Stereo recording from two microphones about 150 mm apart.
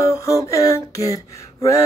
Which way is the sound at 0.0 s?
20° left (ahead or behind).